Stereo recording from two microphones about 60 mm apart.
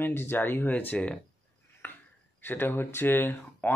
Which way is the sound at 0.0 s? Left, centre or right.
Left.